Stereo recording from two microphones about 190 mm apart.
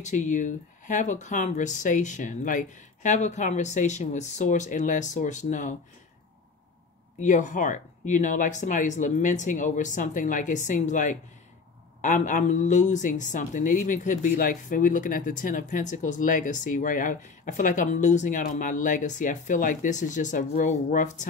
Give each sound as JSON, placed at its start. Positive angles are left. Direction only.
{"t": 0.0, "sound": "speech", "side_deg": 40}
{"t": 7.2, "sound": "a woman's voice", "side_deg": 40}